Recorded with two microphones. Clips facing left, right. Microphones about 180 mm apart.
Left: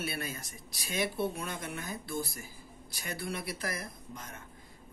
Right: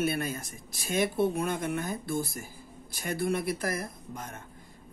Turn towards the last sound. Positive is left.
turn(degrees=-50)  # may be behind; listen again after turning